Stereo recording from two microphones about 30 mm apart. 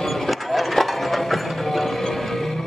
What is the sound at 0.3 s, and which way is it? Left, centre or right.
Clip-clop, centre.